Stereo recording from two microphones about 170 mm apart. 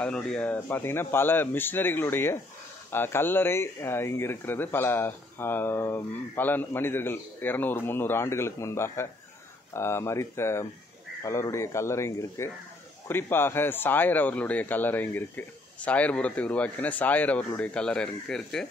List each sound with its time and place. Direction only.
0.0 s speech: 5° left (ahead or behind)